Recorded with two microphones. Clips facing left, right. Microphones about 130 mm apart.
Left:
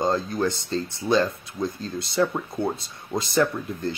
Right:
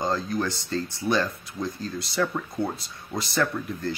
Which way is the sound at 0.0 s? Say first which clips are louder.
Left 3 dB; 20° left (ahead or behind).